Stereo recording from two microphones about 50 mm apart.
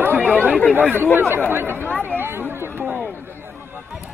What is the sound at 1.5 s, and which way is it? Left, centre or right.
Speech, right.